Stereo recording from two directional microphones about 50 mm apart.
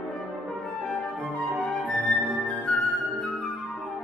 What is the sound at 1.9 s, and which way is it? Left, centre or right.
Music, centre.